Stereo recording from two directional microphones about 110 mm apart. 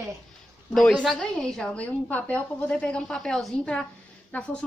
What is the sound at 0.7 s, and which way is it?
A woman's voice, 10° left (ahead or behind).